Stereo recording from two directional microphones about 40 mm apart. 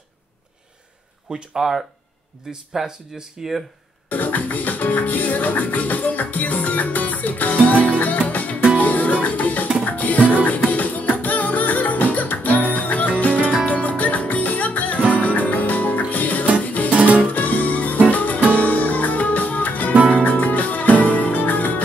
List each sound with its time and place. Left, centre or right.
1.6 s speech: centre
4.1 s music: left
16.9 s music: right
17.3 s music: left